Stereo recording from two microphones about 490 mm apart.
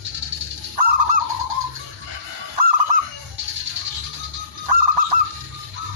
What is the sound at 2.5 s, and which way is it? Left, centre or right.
Goose, right.